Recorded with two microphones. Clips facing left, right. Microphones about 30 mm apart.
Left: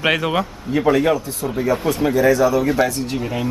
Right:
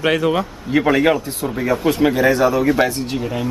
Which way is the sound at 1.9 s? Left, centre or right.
Right.